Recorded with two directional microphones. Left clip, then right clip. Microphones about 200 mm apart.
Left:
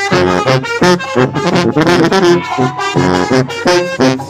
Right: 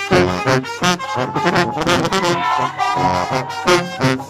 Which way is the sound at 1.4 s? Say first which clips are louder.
Left 3 dB; 15° left (ahead or behind).